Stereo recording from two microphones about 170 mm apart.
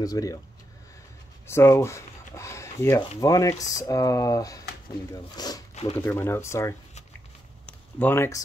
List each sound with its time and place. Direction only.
0.0 s speech: 20° left (ahead or behind)
1.5 s speech: 15° left (ahead or behind)
7.6 s a sound: 10° left (ahead or behind)